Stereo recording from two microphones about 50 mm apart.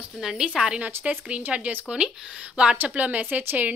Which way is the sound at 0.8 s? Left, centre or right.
Right.